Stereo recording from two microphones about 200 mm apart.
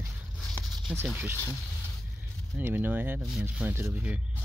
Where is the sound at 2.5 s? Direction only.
10° right (ahead or behind).